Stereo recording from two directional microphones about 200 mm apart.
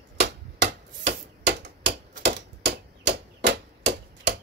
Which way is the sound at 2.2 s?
60° right (ahead or behind).